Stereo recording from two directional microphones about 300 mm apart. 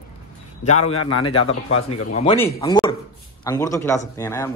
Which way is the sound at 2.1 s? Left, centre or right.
Left.